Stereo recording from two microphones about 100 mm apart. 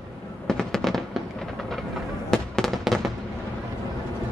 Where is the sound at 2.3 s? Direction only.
5° left (ahead or behind).